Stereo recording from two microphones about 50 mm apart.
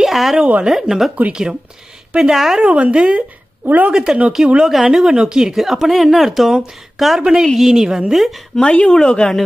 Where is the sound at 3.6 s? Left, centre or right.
Right.